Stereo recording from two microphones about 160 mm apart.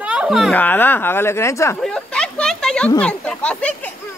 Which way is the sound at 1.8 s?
5° left (ahead or behind).